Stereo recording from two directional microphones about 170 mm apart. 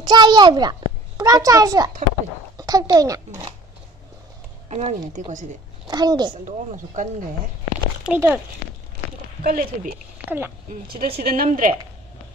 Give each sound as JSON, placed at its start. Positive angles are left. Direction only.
{"t": 0.0, "sound": "a child's voice", "side_deg": -25}
{"t": 4.6, "sound": "speech", "side_deg": -40}
{"t": 5.9, "sound": "a child's voice", "side_deg": -25}
{"t": 6.3, "sound": "speech", "side_deg": -50}
{"t": 8.0, "sound": "a child's voice", "side_deg": -10}
{"t": 9.4, "sound": "speech", "side_deg": -60}
{"t": 10.1, "sound": "speech", "side_deg": -10}
{"t": 11.0, "sound": "speech", "side_deg": -65}